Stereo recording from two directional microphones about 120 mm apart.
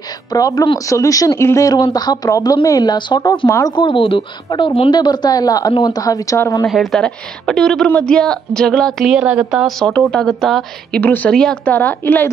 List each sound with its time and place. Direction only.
0.3 s speech: 30° left (ahead or behind)
3.7 s a woman's voice: 45° left (ahead or behind)
5.0 s a woman's voice: 35° left (ahead or behind)
6.7 s a woman's voice: centre (ahead or behind)